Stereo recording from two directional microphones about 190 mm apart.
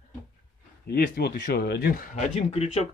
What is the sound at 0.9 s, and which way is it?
Speech, 55° left (ahead or behind).